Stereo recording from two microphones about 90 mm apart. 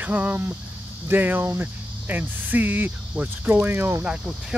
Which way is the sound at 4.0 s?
10° right (ahead or behind).